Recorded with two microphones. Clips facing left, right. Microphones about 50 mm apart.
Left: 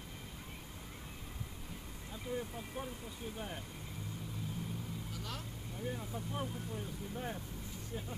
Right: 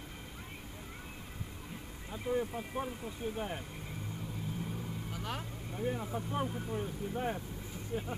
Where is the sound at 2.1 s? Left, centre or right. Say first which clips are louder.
Right 7 dB; right.